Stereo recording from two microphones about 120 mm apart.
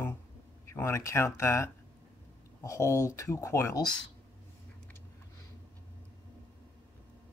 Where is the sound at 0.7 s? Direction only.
20° left (ahead or behind).